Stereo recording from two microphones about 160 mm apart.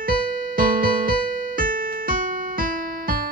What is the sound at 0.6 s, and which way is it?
Music, 60° right (ahead or behind).